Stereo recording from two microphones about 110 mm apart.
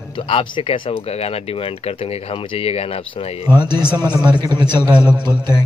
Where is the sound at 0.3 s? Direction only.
55° left (ahead or behind).